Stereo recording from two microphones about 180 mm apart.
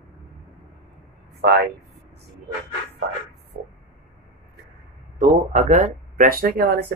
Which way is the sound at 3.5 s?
50° right (ahead or behind).